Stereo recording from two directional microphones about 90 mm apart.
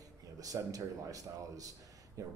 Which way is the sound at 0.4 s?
40° right (ahead or behind).